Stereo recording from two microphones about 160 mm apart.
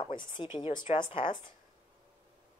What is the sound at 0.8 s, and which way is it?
Speech, 45° left (ahead or behind).